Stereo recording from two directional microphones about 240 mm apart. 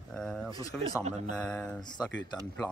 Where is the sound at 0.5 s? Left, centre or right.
Centre.